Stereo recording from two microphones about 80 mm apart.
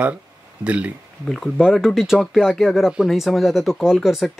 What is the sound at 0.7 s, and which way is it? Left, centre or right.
Speech, centre.